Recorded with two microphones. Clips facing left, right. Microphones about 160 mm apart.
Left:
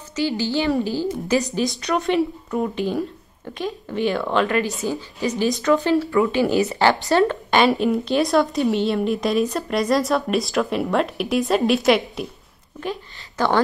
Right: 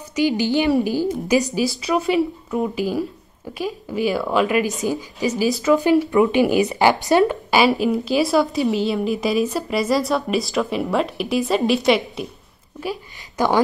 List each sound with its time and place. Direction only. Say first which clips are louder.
0.1 s speech: right 4 dB; 15° right (ahead or behind); by 12.3 s centre (ahead or behind)
13.4 s speech: right 1 dB; 10° right (ahead or behind)